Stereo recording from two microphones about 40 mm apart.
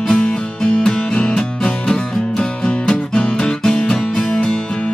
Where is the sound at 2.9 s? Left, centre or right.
Left.